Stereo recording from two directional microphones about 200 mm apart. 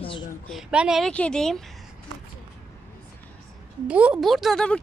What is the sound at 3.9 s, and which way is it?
Speech, 5° right (ahead or behind).